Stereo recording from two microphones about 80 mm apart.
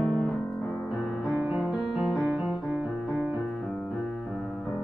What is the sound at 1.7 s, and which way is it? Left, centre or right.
Music, centre.